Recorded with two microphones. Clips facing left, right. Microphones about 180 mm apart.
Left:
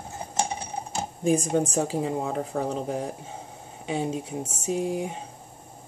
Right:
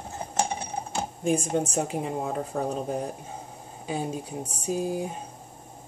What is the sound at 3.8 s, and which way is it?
Speech, 25° left (ahead or behind).